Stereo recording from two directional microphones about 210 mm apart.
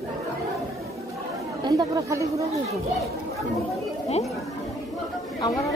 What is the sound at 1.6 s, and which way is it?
Speech, 20° right (ahead or behind).